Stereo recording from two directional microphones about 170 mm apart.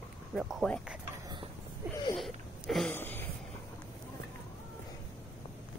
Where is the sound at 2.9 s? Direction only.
10° left (ahead or behind).